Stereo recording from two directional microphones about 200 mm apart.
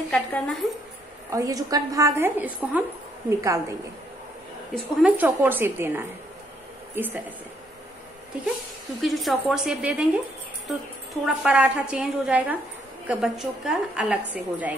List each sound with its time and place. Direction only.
0.1 s a woman's voice: 5° left (ahead or behind)
1.3 s a woman's voice: 15° right (ahead or behind)
5.0 s a woman's voice: 10° right (ahead or behind)
9.0 s a woman's voice: centre (ahead or behind)
11.2 s a woman's voice: 5° right (ahead or behind)